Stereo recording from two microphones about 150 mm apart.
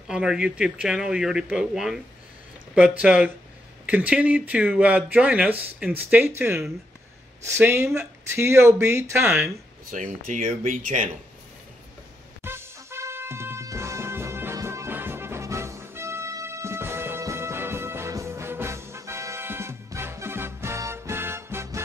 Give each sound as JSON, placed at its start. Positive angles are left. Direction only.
{"t": 0.1, "sound": "speech", "side_deg": -5}
{"t": 9.8, "sound": "speech", "side_deg": -60}
{"t": 12.4, "sound": "music", "side_deg": -15}